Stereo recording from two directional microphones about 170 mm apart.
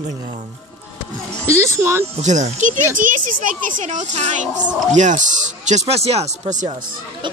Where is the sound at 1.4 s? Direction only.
15° right (ahead or behind).